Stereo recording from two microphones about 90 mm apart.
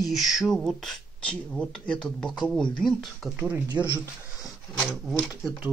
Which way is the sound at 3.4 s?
15° right (ahead or behind).